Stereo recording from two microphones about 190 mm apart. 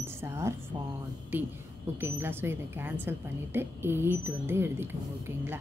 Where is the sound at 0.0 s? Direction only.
15° right (ahead or behind).